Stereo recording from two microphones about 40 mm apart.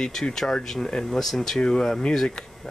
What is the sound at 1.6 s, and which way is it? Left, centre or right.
Speech, left.